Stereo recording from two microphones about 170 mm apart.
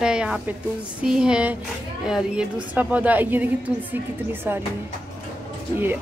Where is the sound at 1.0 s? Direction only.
5° right (ahead or behind).